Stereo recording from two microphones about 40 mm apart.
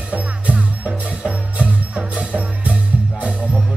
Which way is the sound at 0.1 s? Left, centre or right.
Right.